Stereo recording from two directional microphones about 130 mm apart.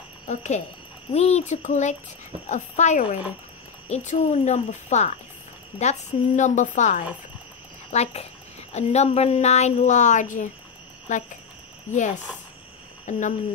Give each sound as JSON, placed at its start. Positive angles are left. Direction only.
{"t": 0.3, "sound": "a woman's voice", "side_deg": 65}
{"t": 7.9, "sound": "a woman's voice", "side_deg": 55}
{"t": 13.1, "sound": "a woman's voice", "side_deg": 70}